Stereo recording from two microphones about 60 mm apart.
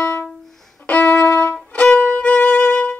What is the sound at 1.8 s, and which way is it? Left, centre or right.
Music, left.